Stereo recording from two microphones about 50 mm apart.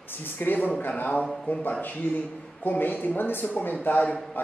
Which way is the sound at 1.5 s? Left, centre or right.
Left.